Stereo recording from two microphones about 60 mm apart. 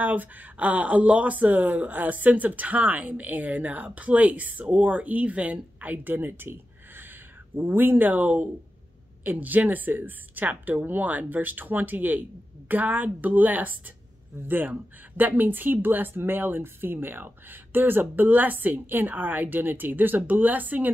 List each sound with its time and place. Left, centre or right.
0.0 s a woman's voice: right